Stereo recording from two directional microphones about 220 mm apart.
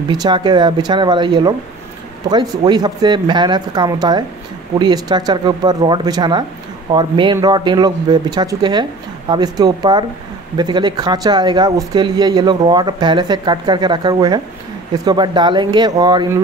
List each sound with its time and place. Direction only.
0.1 s speech: 20° right (ahead or behind)